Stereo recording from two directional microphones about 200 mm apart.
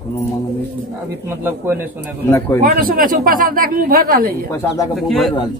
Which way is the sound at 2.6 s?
45° right (ahead or behind).